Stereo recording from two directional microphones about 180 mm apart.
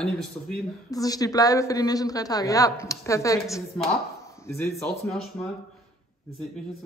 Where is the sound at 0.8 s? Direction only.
20° left (ahead or behind).